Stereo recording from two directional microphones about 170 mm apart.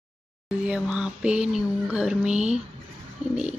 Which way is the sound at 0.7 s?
5° right (ahead or behind).